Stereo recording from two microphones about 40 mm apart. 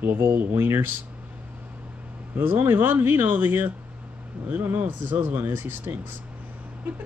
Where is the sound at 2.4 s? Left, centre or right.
Right.